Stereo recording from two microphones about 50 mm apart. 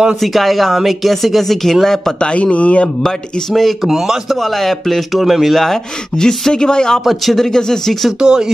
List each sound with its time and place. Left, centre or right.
0.2 s speech: centre
2.1 s a man's voice: left
3.0 s speech: centre
3.8 s a man's voice: centre
4.4 s speech: centre
7.1 s speech: centre
8.2 s a man's voice: centre